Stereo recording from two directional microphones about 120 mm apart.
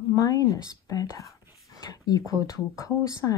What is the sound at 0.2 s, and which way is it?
Speech, 30° left (ahead or behind).